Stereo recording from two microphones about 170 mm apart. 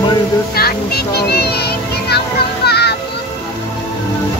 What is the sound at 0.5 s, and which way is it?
Music, 65° left (ahead or behind).